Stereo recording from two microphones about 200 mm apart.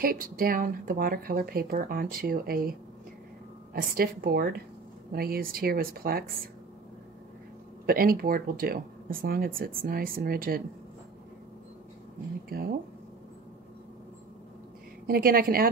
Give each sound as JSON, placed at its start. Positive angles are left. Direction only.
{"t": 0.0, "sound": "speech", "side_deg": -45}
{"t": 3.7, "sound": "speech", "side_deg": -45}
{"t": 7.8, "sound": "speech", "side_deg": -45}
{"t": 12.4, "sound": "speech", "side_deg": -50}
{"t": 15.0, "sound": "speech", "side_deg": -50}